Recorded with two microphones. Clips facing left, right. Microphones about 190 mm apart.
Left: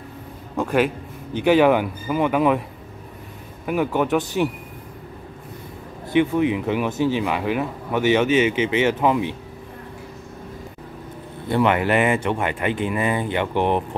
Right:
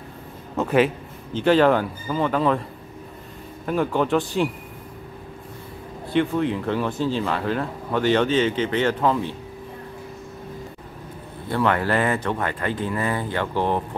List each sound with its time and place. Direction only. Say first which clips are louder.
0.6 s a man's voice: right 1 dB; centre (ahead or behind)
1.3 s speech: left 1 dB; 15° left (ahead or behind)
3.6 s speech: left 1 dB; 10° left (ahead or behind)
6.1 s speech: left 3 dB; 10° left (ahead or behind)
11.4 s speech: left 3 dB; 20° left (ahead or behind)